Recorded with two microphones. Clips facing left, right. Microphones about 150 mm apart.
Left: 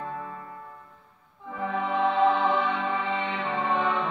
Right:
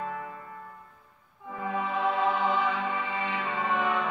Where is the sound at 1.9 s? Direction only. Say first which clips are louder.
Left 5 dB; 25° left (ahead or behind).